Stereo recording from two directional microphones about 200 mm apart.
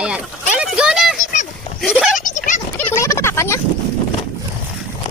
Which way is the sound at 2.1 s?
40° left (ahead or behind).